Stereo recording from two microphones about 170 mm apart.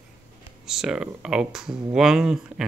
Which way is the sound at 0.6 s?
5° right (ahead or behind).